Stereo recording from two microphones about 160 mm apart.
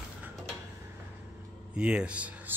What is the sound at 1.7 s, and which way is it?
Speech, 5° right (ahead or behind).